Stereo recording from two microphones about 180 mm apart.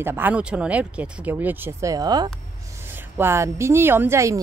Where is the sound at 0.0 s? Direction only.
10° right (ahead or behind).